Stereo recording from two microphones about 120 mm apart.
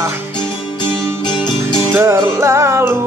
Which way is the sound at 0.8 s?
40° left (ahead or behind).